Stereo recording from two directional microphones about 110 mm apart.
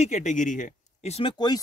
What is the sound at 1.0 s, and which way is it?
Speech, 65° left (ahead or behind).